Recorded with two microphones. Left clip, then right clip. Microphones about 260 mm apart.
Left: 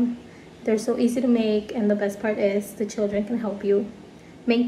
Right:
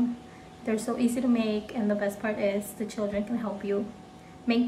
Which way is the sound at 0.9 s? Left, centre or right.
Right.